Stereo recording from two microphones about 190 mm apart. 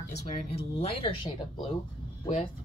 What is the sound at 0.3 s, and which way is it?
Speech, 35° left (ahead or behind).